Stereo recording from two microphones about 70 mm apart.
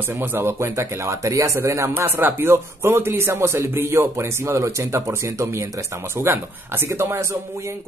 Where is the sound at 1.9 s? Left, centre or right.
Right.